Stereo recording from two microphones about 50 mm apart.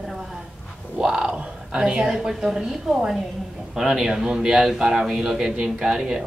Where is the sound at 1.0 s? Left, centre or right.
Centre.